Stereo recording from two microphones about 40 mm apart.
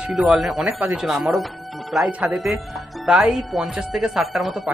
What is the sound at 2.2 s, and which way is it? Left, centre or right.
Speech, right.